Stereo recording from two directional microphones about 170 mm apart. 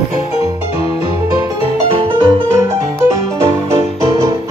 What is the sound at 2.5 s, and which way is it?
Music, 20° right (ahead or behind).